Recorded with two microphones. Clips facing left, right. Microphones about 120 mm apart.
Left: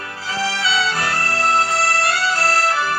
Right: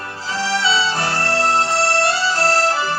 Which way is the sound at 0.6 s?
35° right (ahead or behind).